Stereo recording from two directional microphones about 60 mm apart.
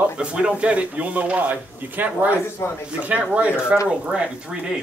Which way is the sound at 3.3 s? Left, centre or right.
Right.